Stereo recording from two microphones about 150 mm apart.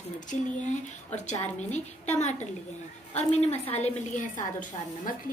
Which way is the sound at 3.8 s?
55° left (ahead or behind).